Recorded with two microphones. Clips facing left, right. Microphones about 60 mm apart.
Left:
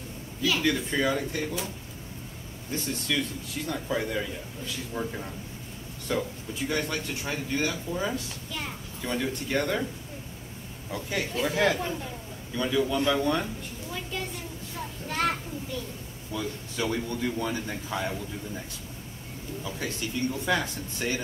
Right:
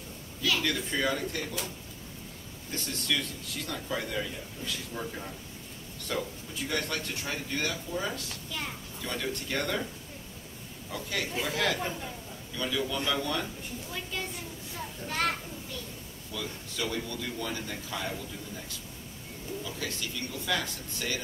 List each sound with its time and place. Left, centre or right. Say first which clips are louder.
0.4 s speech: left 4 dB; centre
2.7 s speech: left 3 dB; centre
10.9 s a man's voice: left 3 dB; left
15.0 s a child's voice: left 3 dB; centre
16.3 s a man's voice: left 4 dB; left
19.6 s a man's voice: left 6 dB; left